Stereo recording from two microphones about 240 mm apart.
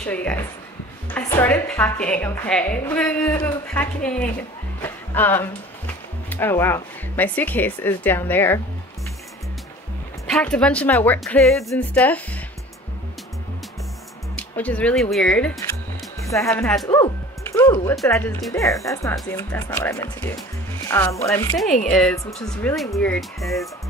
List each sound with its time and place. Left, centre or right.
0.0 s a woman's voice: centre
10.3 s a woman's voice: centre
14.3 s a woman's voice: centre